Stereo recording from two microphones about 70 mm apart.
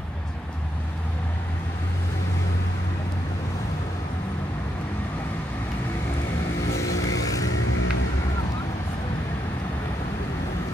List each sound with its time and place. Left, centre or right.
6.9 s vehicle: left